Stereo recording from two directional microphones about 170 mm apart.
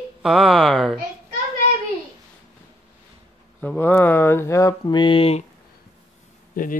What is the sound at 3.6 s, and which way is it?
Speech, 10° left (ahead or behind).